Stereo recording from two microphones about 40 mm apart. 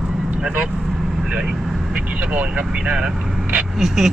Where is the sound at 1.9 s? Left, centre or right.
Right.